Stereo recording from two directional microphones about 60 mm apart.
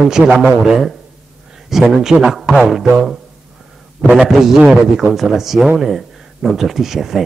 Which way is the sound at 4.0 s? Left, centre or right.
Right.